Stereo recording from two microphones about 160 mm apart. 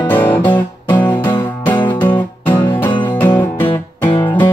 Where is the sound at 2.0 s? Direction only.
10° left (ahead or behind).